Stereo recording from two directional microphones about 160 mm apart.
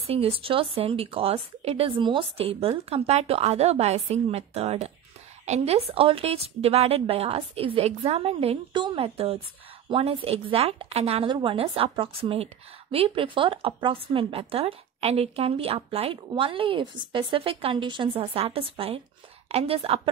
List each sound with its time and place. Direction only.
0.0 s speech: 35° right (ahead or behind)